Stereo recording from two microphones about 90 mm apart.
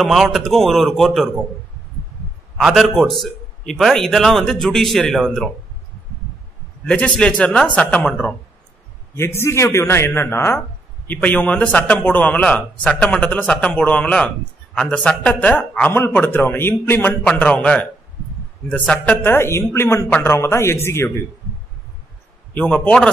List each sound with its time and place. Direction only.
0.0 s a man's voice: centre (ahead or behind)
2.5 s a man's voice: centre (ahead or behind)
6.9 s a man's voice: 10° left (ahead or behind)
9.1 s speech: 30° left (ahead or behind)
11.1 s a man's voice: 15° left (ahead or behind)
17.4 s a man's voice: 15° left (ahead or behind); by 21.1 s 30° left (ahead or behind)
22.5 s a man's voice: 15° left (ahead or behind)